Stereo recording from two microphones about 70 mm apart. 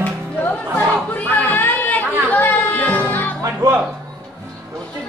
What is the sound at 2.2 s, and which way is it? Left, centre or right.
Music, left.